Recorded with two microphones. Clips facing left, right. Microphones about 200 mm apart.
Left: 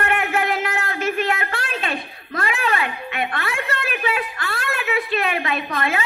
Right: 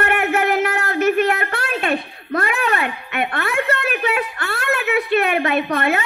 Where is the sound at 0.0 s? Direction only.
60° right (ahead or behind).